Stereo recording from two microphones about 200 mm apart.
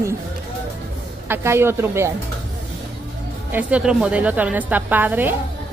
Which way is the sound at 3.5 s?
5° right (ahead or behind).